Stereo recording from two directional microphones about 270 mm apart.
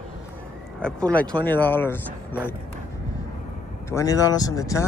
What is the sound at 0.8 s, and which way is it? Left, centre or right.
Speech, centre.